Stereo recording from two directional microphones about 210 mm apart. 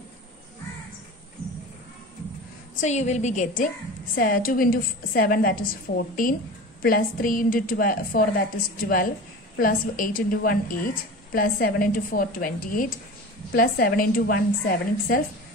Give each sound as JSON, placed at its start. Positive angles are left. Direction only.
{"t": 2.8, "sound": "a woman's voice", "side_deg": 35}